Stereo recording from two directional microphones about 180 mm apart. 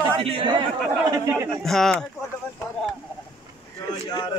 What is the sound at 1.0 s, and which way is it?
Speech, 20° right (ahead or behind).